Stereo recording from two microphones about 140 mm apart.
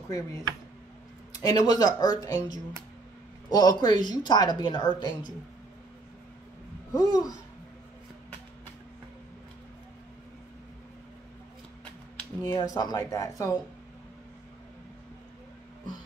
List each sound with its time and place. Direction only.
1.3 s speech: 25° left (ahead or behind)
6.9 s speech: 25° left (ahead or behind)
12.4 s speech: 25° left (ahead or behind)